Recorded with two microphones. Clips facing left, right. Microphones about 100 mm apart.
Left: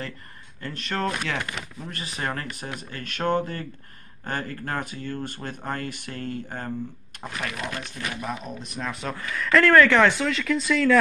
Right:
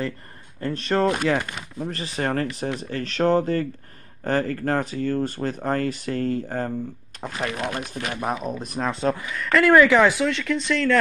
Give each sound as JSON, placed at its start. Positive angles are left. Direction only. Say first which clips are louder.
{"t": 0.6, "sound": "speech", "louder": "right 7 dB", "side_deg": -35}
{"t": 9.3, "sound": "speech", "louder": "even", "side_deg": 0}